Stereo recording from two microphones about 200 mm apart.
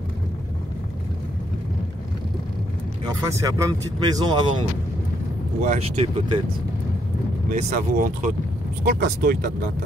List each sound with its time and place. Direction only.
3.3 s speech: 15° right (ahead or behind)
5.6 s speech: 35° right (ahead or behind)
7.5 s speech: 40° right (ahead or behind)